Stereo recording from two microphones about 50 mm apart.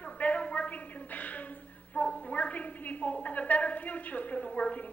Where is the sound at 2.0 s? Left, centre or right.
Left.